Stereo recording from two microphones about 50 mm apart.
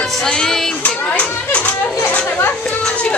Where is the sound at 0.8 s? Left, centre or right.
Left.